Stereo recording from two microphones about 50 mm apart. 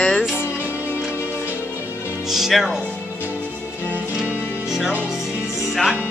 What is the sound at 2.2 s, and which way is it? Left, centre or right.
Speech, centre.